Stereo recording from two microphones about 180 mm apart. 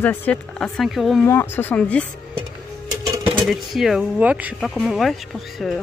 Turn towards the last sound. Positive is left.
turn(degrees=0)  # may be behind; listen again after turning